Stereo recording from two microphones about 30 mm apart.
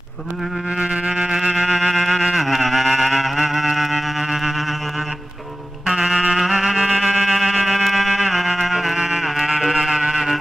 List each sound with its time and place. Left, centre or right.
0.7 s music: right
1.7 s music: centre
5.9 s music: right
6.3 s music: centre
8.9 s music: centre
9.6 s music: centre